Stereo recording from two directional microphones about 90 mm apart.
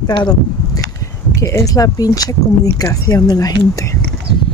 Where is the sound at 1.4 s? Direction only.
40° left (ahead or behind).